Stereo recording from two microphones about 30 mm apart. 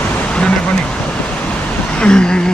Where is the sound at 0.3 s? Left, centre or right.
Left.